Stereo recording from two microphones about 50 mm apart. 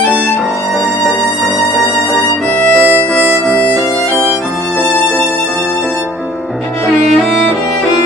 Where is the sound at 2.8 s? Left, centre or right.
Right.